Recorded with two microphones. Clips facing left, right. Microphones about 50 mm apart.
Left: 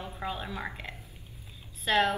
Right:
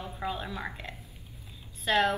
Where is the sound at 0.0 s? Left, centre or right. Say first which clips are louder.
Right 1 dB; centre.